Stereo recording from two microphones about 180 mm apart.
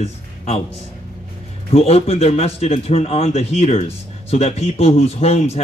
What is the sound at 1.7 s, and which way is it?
A man's voice, 35° left (ahead or behind).